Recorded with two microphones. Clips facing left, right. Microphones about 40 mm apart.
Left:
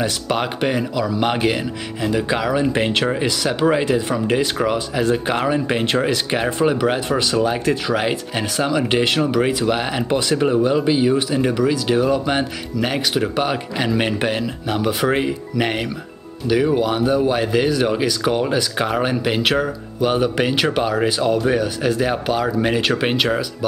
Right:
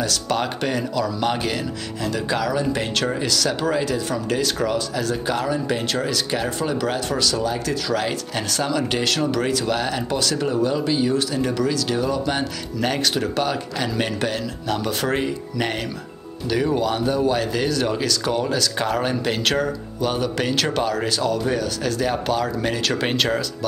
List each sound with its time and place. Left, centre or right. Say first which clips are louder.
0.0 s speech: left 2 dB; left
12.8 s speech: left 1 dB; centre